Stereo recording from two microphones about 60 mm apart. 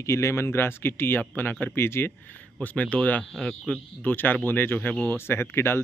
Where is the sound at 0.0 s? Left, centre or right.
Left.